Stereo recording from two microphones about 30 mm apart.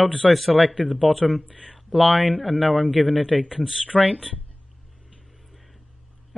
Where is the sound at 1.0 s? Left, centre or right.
Centre.